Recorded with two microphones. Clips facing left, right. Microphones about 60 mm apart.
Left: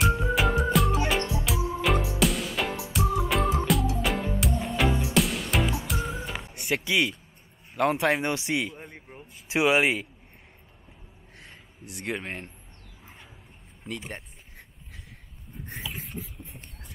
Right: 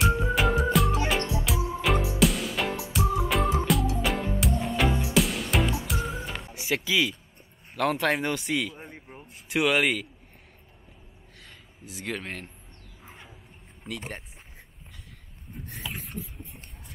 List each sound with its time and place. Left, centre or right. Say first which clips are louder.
0.0 s music: even; centre
7.7 s speech: left 2 dB; centre
8.0 s speech: left 1 dB; centre
8.7 s speech: even; centre
9.6 s speech: left 1 dB; centre
12.1 s speech: left 1 dB; centre
15.8 s a sound: right 1 dB; centre